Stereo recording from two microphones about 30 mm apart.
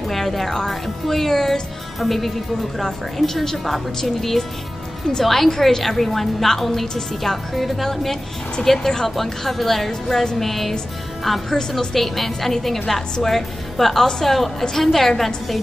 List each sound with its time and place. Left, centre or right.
0.0 s music: centre
0.7 s a woman's voice: centre
9.1 s a woman's voice: centre